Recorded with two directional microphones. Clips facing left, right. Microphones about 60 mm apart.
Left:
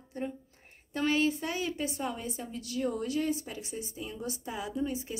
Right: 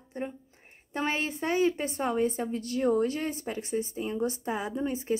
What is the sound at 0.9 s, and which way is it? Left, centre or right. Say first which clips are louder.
A woman's voice: left 2 dB; right.